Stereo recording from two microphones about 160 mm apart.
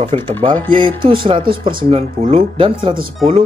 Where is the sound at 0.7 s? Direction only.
30° right (ahead or behind).